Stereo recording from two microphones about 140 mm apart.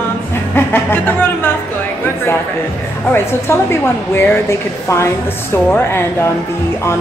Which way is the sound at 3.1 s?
15° left (ahead or behind).